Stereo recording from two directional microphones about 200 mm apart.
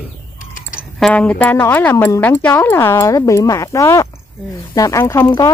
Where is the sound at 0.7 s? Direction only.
Centre (ahead or behind).